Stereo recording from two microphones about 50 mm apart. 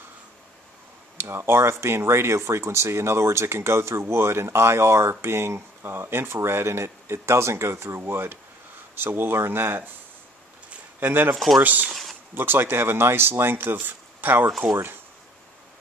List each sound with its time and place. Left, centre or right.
1.1 s speech: right
11.0 s speech: right
11.3 s speech: centre
11.6 s speech: right
11.9 s a sound: centre
12.4 s speech: right